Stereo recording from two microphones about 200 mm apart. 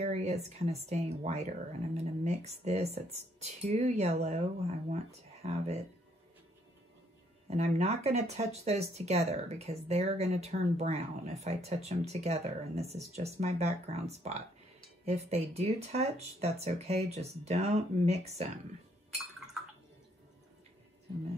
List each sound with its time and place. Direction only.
0.0 s speech: 30° right (ahead or behind)
7.4 s speech: 35° right (ahead or behind)